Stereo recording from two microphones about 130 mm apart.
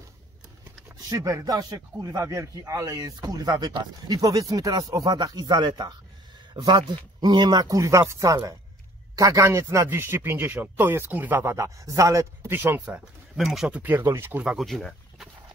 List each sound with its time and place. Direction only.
0.8 s speech: 20° right (ahead or behind)
13.4 s speech: centre (ahead or behind); by 14.4 s 20° right (ahead or behind)
14.4 s speech: 5° right (ahead or behind)